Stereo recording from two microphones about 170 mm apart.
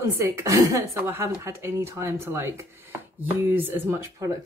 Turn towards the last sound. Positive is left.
turn(degrees=-15)  # may be behind; listen again after turning